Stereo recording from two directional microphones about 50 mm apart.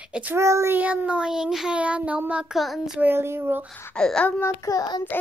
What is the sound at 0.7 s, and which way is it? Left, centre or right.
Child singing, right.